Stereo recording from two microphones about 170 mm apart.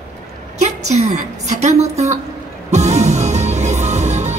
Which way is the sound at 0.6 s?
40° right (ahead or behind).